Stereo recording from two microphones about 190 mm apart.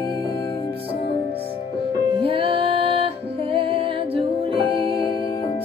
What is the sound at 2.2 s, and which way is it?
Music, 25° right (ahead or behind).